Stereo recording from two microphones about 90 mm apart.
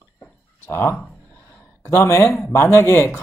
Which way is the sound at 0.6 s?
25° left (ahead or behind).